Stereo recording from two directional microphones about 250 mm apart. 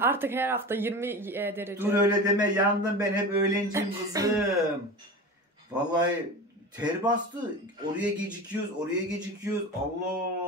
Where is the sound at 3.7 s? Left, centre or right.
Centre.